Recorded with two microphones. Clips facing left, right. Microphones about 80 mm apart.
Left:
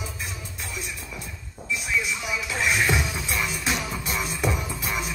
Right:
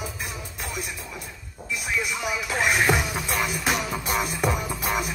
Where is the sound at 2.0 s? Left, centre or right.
Right.